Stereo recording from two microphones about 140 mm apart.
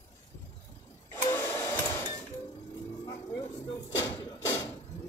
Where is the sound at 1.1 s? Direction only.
20° left (ahead or behind).